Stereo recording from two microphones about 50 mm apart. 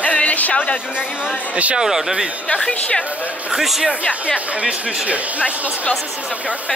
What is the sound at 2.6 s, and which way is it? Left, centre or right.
Speech, left.